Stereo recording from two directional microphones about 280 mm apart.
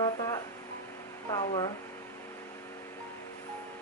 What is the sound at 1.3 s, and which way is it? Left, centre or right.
Speech, centre.